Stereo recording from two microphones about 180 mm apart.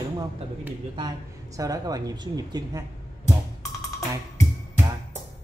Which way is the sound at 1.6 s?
20° right (ahead or behind).